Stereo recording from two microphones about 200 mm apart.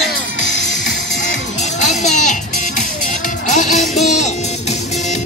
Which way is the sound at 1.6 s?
35° left (ahead or behind).